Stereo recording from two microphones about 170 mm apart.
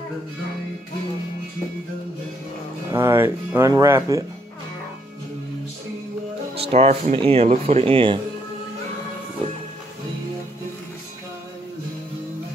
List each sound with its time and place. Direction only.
2.9 s speech: 15° right (ahead or behind)
6.5 s speech: 35° right (ahead or behind)